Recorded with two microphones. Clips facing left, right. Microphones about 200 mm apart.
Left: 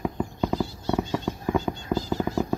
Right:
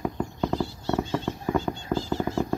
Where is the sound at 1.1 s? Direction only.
Centre (ahead or behind).